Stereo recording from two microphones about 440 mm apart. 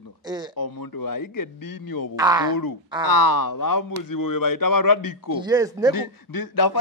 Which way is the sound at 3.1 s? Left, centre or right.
Left.